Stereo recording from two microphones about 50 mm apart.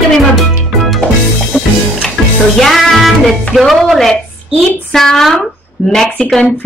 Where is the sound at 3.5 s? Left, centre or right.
Centre.